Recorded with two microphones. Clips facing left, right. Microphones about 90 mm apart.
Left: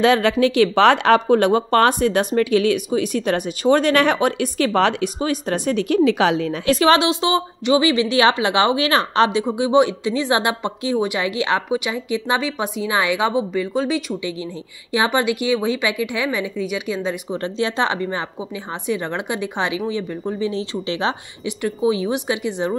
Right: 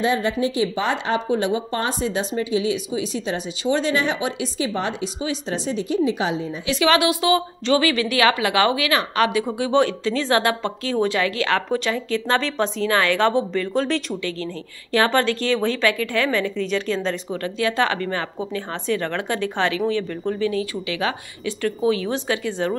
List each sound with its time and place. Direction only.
0.0 s speech: 80° left
5.2 s speech: 55° left (ahead or behind); by 6.5 s 75° left (ahead or behind)
6.6 s a woman's voice: 45° left (ahead or behind)
6.9 s speech: 25° left (ahead or behind)
17.4 s speech: 25° left (ahead or behind)
21.5 s speech: 15° left (ahead or behind)